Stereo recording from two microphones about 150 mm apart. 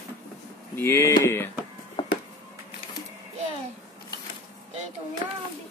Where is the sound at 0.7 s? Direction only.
15° left (ahead or behind).